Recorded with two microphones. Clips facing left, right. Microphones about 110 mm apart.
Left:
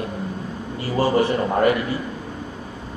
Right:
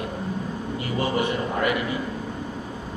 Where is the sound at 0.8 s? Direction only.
35° left (ahead or behind).